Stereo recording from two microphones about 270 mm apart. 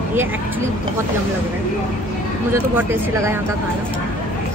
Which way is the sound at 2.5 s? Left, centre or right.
Centre.